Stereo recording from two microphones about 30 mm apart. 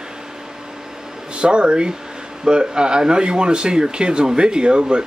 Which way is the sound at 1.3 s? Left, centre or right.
Right.